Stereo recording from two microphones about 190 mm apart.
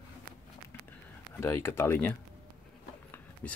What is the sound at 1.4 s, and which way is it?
Speech, 15° left (ahead or behind).